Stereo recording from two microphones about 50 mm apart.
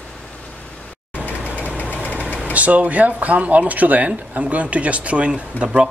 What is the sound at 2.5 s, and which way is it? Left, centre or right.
Speech, right.